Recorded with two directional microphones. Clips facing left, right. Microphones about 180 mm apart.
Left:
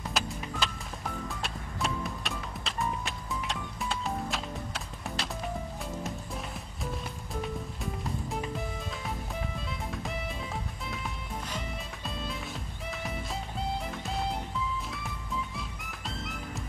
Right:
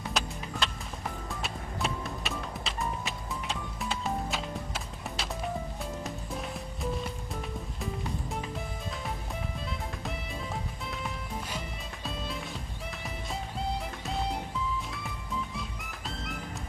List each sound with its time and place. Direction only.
0.0 s music: centre (ahead or behind)